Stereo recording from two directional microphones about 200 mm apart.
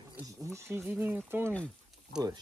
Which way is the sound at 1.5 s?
5° left (ahead or behind).